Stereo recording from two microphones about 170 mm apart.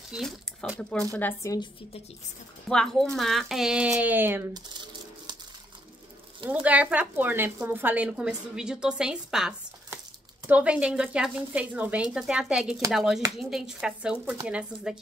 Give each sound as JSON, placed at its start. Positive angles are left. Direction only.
{"t": 0.1, "sound": "a woman's voice", "side_deg": 0}
{"t": 2.7, "sound": "a woman's voice", "side_deg": 5}
{"t": 6.5, "sound": "a woman's voice", "side_deg": -10}